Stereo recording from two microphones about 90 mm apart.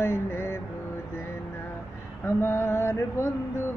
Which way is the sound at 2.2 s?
25° left (ahead or behind).